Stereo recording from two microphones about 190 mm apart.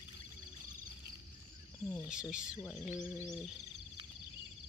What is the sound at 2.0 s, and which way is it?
Speech, 5° right (ahead or behind).